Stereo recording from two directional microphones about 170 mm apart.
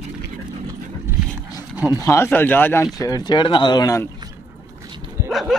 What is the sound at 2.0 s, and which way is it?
Speech, 15° left (ahead or behind).